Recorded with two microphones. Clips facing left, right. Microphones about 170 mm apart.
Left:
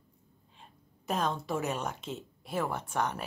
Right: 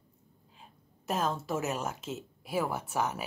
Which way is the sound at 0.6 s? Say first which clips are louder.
Even; centre (ahead or behind).